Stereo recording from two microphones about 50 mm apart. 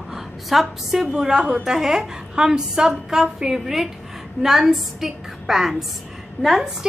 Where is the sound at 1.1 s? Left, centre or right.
Centre.